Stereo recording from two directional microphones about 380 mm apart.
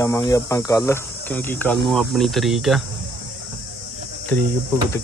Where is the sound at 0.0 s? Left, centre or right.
Centre.